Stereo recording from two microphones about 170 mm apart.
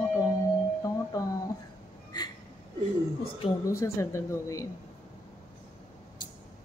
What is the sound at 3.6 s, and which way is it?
A woman's voice, 20° left (ahead or behind).